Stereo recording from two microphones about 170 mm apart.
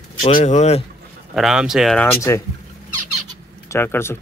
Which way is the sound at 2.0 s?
15° left (ahead or behind).